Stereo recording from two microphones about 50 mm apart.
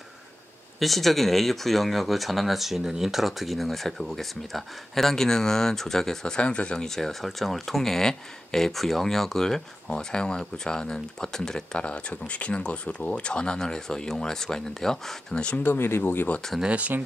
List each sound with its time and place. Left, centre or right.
0.7 s speech: centre
7.0 s speech: centre; by 15.6 s left
15.6 s speech: left
16.6 s speech: right